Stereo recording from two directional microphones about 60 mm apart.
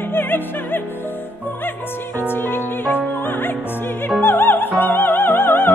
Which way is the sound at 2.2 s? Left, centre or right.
Left.